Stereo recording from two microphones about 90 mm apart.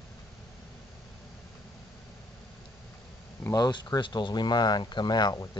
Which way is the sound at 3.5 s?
50° left (ahead or behind).